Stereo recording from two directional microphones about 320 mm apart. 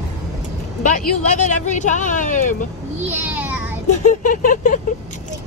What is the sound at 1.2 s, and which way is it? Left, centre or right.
Speech, left.